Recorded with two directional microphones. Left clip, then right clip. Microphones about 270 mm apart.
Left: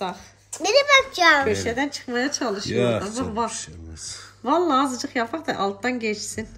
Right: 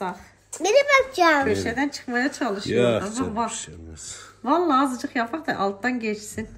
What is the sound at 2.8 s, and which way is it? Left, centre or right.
Speech, left.